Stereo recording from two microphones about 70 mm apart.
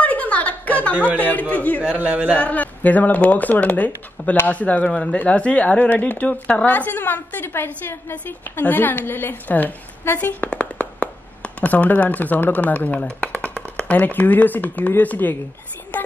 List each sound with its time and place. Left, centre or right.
0.0 s a sound: left
1.1 s speech: left
1.9 s a man's voice: centre
2.3 s speech: left